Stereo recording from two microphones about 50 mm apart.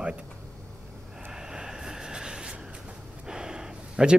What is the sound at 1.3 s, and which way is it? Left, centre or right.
Vehicle, centre.